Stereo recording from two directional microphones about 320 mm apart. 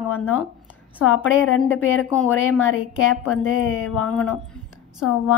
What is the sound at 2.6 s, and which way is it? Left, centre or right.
A woman's voice, left.